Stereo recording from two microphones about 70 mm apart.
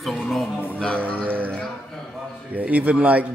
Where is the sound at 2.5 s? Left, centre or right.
Right.